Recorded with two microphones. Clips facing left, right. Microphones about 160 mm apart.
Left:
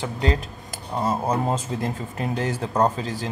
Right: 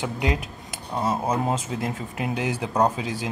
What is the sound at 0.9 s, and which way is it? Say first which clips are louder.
Speech: left 1 dB; centre (ahead or behind).